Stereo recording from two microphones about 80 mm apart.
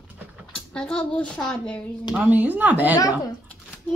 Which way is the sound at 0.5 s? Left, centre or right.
Centre.